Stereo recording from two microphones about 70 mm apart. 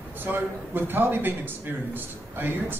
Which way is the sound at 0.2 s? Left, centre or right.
Right.